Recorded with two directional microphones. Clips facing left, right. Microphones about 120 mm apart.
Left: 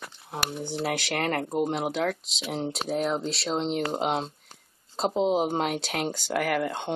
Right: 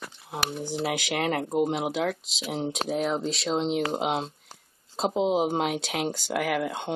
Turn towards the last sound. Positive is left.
turn(degrees=-5)  # may be behind; listen again after turning